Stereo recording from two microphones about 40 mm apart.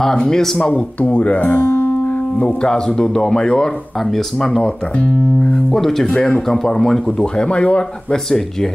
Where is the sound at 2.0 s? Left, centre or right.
Left.